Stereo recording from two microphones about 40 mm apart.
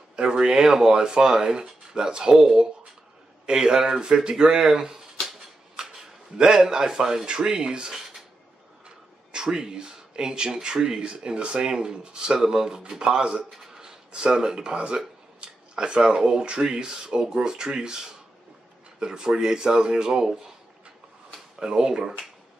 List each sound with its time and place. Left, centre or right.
0.1 s speech: right
5.8 s a sound: centre
6.3 s a man's voice: centre
15.0 s a sound: right
16.2 s speech: right
21.5 s speech: right